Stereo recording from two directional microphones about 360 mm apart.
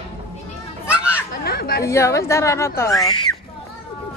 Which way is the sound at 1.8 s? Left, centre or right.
Centre.